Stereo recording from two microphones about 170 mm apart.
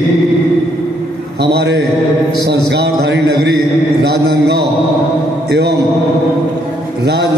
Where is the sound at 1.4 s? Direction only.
75° right (ahead or behind).